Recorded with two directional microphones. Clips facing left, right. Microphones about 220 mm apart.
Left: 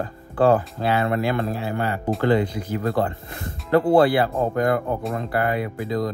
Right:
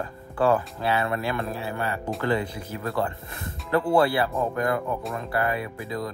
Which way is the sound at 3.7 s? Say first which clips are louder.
Left 5 dB; 35° left (ahead or behind).